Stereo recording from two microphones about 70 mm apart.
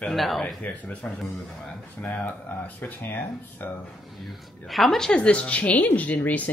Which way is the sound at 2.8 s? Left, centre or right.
Left.